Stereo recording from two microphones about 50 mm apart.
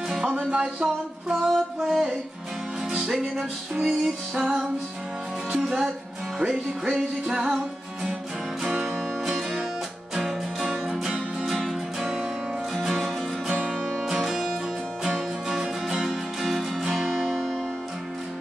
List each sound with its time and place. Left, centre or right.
0.1 s music: centre
1.3 s music: centre
5.6 s music: centre
8.8 s music: centre
16.1 s music: centre